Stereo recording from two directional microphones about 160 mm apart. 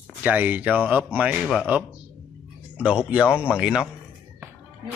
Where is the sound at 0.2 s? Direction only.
10° right (ahead or behind).